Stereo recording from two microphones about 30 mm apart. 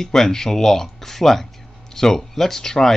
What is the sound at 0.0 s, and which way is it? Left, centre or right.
Speech, centre.